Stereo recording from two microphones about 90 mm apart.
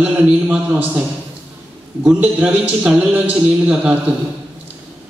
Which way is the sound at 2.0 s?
15° right (ahead or behind).